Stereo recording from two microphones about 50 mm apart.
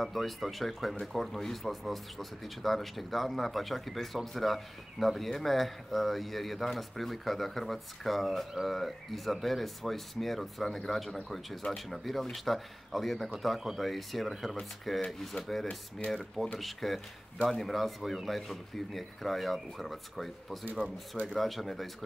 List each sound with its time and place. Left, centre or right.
0.0 s speech: centre